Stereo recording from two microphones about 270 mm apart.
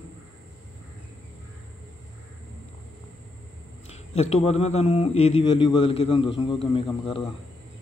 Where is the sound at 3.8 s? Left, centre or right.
Left.